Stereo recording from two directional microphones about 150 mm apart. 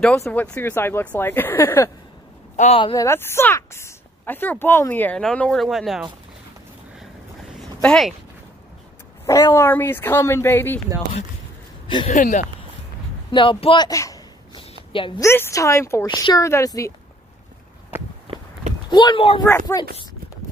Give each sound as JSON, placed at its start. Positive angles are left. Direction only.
{"t": 0.2, "sound": "speech", "side_deg": 10}
{"t": 2.5, "sound": "speech", "side_deg": 50}
{"t": 2.8, "sound": "speech", "side_deg": 30}
{"t": 3.1, "sound": "speech", "side_deg": 15}
{"t": 7.8, "sound": "speech", "side_deg": 5}
{"t": 9.2, "sound": "speech", "side_deg": 20}
{"t": 12.1, "sound": "speech", "side_deg": 55}
{"t": 13.3, "sound": "speech", "side_deg": 35}
{"t": 13.8, "sound": "a woman's voice", "side_deg": 20}
{"t": 14.9, "sound": "a woman's voice", "side_deg": 35}
{"t": 15.2, "sound": "a woman's voice", "side_deg": 15}
{"t": 18.3, "sound": "walk", "side_deg": -40}
{"t": 18.9, "sound": "speech", "side_deg": 30}
{"t": 19.7, "sound": "a woman's voice", "side_deg": 25}